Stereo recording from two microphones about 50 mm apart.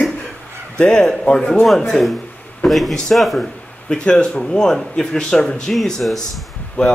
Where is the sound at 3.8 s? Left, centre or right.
Centre.